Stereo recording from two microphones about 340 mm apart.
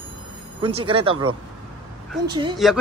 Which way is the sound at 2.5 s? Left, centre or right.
Centre.